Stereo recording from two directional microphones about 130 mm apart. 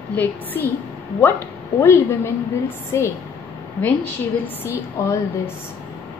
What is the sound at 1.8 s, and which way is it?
Speech, 15° left (ahead or behind).